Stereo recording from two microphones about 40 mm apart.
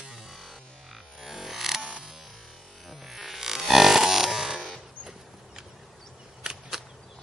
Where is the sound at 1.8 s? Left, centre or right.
Right.